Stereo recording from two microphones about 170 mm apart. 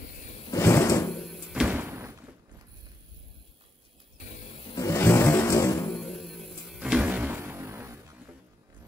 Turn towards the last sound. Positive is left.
turn(degrees=-15)  # may be behind; listen again after turning